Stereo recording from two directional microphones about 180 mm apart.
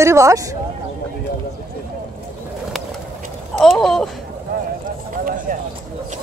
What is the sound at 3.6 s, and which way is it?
Speech, centre (ahead or behind).